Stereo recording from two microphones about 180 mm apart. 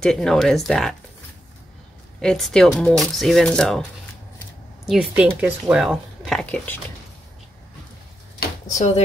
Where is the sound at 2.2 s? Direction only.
Centre (ahead or behind).